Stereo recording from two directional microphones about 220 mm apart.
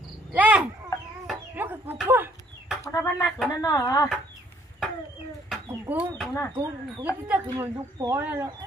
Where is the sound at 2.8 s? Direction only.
15° left (ahead or behind).